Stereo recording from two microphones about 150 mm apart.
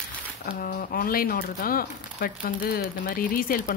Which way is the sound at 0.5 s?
70° left (ahead or behind).